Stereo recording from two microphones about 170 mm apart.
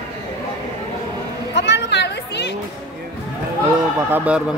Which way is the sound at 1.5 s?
90° left.